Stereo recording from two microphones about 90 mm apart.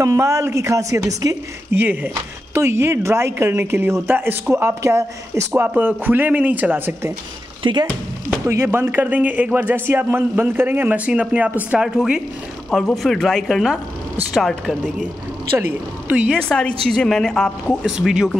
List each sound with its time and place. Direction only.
0.0 s a woman's voice: 35° right (ahead or behind)
1.7 s speech: 25° right (ahead or behind)
5.6 s speech: 20° right (ahead or behind)
7.6 s speech: 65° right (ahead or behind)
8.5 s speech: 30° right (ahead or behind)
12.7 s speech: 5° left (ahead or behind)
16.1 s speech: 15° right (ahead or behind)
16.4 s a woman's voice: 10° left (ahead or behind)
17.9 s speech: 5° right (ahead or behind)